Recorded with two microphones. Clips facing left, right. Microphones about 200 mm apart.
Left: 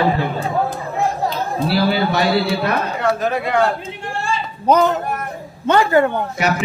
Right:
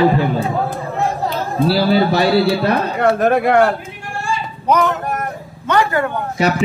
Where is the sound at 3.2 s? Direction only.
55° right (ahead or behind).